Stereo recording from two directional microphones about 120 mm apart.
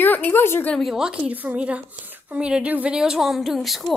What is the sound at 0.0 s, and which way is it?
Speech, 15° left (ahead or behind).